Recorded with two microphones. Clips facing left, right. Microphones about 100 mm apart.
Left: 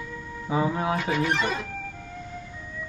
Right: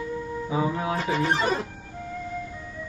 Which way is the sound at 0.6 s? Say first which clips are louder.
Left 2 dB; 30° left (ahead or behind).